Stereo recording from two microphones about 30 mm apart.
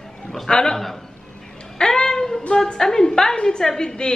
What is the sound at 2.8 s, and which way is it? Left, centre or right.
Speech, centre.